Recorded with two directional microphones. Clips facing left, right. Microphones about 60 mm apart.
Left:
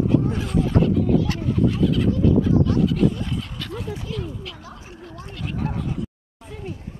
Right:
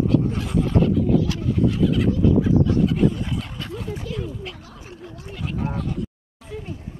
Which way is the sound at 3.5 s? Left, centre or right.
Right.